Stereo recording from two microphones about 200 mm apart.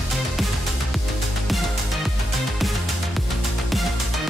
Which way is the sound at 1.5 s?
Centre (ahead or behind).